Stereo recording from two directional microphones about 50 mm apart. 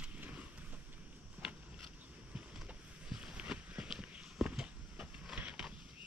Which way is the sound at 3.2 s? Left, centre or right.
Centre.